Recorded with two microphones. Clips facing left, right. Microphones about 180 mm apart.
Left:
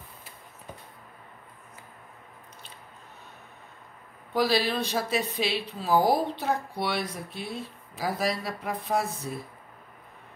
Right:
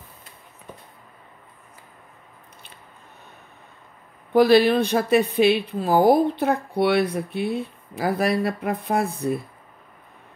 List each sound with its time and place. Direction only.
4.3 s speech: 55° right (ahead or behind)